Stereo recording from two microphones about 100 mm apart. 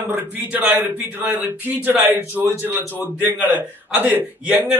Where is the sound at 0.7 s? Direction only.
20° right (ahead or behind).